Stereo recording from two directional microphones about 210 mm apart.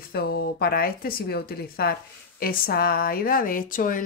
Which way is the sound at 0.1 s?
45° left (ahead or behind).